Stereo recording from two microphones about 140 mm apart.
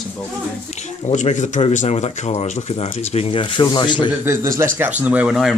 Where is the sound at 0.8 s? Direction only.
55° left (ahead or behind); by 4.1 s 35° left (ahead or behind).